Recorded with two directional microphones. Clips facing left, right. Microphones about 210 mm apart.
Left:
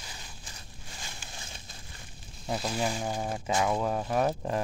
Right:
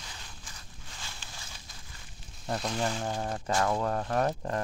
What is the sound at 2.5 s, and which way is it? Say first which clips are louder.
Speech: left 1 dB; 5° left (ahead or behind).